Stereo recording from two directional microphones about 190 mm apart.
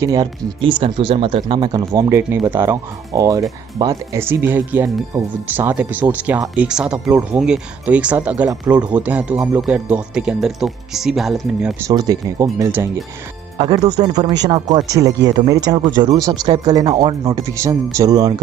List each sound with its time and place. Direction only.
0.0 s speech: 15° right (ahead or behind); by 11.7 s centre (ahead or behind)
11.9 s speech: 20° right (ahead or behind)